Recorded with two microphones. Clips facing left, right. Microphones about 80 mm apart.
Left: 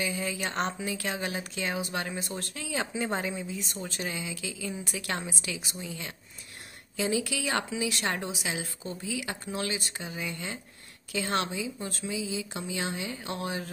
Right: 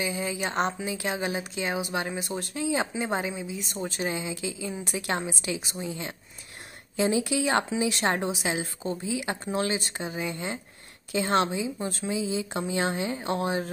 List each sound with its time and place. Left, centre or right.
0.0 s speech: centre